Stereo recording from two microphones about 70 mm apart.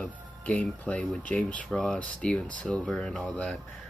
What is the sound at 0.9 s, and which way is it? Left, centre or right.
Speech, centre.